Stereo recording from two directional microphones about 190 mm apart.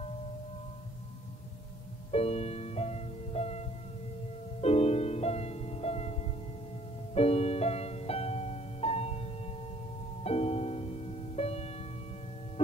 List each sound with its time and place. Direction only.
2.0 s music: 35° left (ahead or behind)